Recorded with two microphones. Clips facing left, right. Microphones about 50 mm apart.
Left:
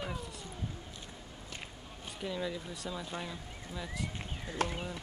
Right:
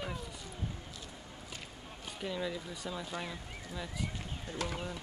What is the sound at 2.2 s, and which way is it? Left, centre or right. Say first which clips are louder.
Speech: even; centre.